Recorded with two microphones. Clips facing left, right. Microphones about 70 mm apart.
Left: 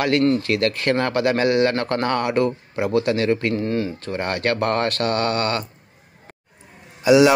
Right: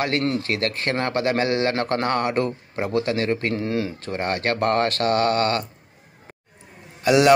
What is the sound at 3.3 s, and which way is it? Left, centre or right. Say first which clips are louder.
Mantra: left 2 dB; right.